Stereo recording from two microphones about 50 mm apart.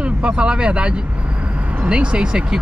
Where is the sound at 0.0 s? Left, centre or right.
Right.